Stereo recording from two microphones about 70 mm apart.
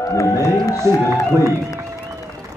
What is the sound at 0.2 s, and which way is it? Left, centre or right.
Speech, left.